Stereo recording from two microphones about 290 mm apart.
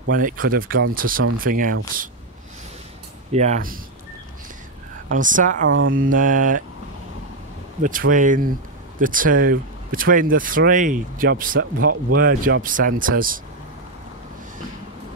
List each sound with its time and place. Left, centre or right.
0.1 s speech: right
3.3 s speech: right
5.1 s speech: right
7.8 s speech: right